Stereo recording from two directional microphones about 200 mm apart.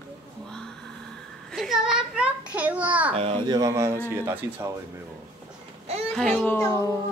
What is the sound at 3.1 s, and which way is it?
Speech, 25° right (ahead or behind).